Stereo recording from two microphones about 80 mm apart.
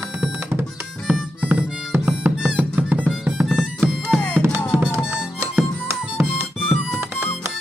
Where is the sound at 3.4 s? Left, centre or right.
Centre.